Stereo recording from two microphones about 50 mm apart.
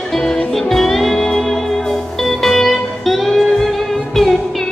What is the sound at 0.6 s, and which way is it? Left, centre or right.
Music, centre.